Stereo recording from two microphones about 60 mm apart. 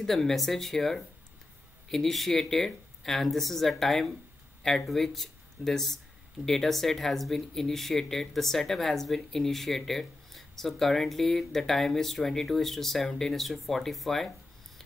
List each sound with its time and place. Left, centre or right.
0.0 s speech: centre